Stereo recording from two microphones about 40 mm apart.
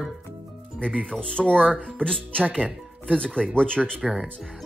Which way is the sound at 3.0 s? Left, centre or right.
Left.